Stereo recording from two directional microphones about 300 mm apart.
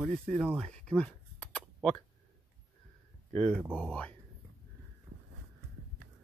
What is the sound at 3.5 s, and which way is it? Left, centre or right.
Speech, centre.